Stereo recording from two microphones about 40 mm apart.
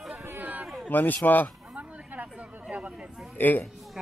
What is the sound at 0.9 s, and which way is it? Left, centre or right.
Speech, left.